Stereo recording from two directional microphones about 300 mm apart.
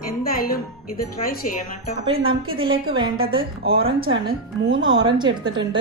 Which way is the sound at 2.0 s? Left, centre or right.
Centre.